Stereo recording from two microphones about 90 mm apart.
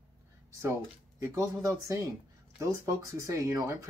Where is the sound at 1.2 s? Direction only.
35° right (ahead or behind).